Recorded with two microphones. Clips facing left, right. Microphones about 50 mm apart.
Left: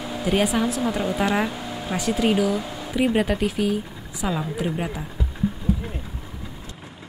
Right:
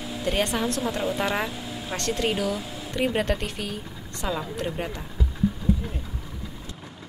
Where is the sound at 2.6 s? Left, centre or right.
Left.